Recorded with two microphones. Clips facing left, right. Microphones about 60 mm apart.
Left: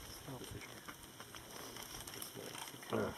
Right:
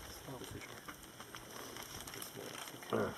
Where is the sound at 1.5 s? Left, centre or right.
Centre.